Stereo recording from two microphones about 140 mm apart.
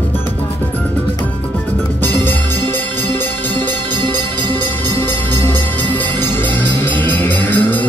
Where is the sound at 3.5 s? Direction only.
35° right (ahead or behind).